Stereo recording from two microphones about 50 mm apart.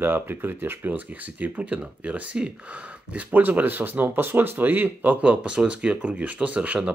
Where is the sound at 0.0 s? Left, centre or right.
Right.